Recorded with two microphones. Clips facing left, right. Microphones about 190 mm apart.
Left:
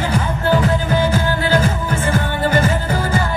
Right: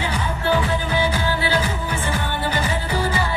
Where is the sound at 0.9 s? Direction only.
45° left (ahead or behind).